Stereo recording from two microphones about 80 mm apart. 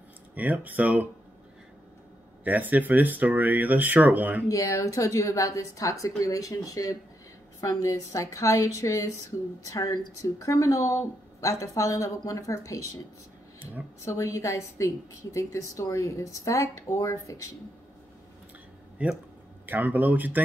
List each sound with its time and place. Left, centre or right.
0.3 s speech: centre
2.4 s speech: right
4.5 s speech: left
14.0 s speech: left
19.0 s speech: centre